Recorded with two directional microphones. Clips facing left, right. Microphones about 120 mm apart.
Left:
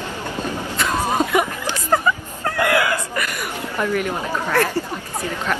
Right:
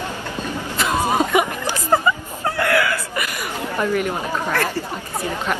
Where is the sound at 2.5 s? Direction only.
15° left (ahead or behind).